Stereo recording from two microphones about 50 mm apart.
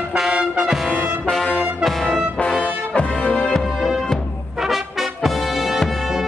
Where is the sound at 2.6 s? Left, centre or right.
Left.